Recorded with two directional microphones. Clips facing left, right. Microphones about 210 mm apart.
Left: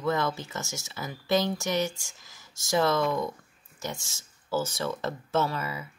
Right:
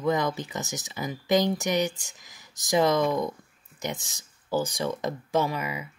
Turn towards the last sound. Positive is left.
turn(degrees=-15)  # may be behind; listen again after turning